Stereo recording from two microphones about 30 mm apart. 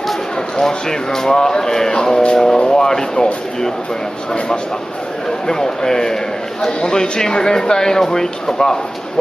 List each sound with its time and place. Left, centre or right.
0.6 s speech: centre
5.5 s speech: centre